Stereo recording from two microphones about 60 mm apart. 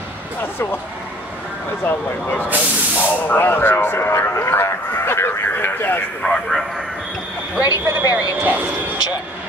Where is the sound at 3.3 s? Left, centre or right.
Left.